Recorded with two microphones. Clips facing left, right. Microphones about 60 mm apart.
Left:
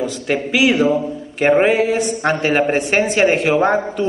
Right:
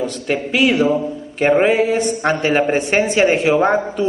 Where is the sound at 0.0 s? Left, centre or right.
Centre.